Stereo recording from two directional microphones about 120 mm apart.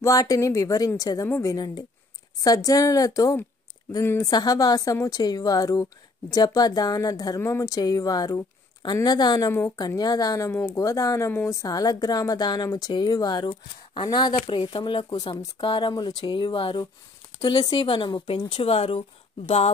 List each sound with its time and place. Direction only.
0.0 s speech: 30° left (ahead or behind)
4.3 s speech: 35° left (ahead or behind)
15.0 s speech: 30° left (ahead or behind)
15.6 s speech: 45° left (ahead or behind)